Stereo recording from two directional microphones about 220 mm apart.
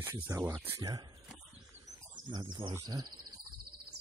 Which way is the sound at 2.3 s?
20° right (ahead or behind).